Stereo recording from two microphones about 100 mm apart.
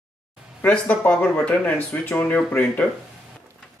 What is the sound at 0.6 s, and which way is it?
Speech, 15° left (ahead or behind).